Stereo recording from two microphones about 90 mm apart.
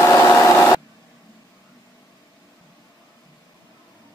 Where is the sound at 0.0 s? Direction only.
40° left (ahead or behind).